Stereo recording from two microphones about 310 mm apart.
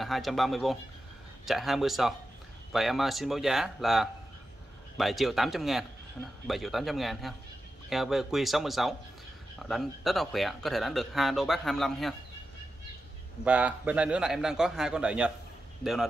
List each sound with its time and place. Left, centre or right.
0.0 s speech: centre
13.4 s speech: centre